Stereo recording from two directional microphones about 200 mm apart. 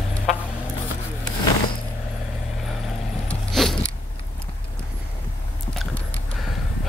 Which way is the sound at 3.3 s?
Centre (ahead or behind).